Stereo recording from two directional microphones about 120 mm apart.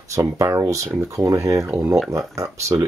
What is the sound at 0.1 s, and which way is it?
Speech, 25° right (ahead or behind).